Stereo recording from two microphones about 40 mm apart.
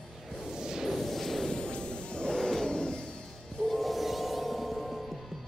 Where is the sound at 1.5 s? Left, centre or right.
Left.